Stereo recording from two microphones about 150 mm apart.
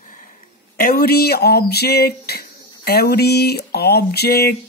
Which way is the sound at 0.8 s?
90° left.